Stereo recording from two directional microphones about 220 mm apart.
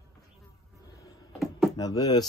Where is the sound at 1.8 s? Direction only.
15° left (ahead or behind).